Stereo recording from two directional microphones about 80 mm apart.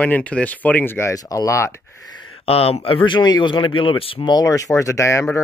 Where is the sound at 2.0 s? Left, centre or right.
Left.